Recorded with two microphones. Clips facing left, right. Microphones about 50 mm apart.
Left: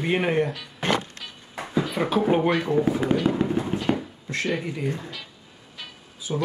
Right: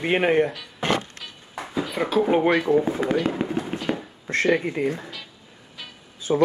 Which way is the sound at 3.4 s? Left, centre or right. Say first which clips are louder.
Left 2 dB; right.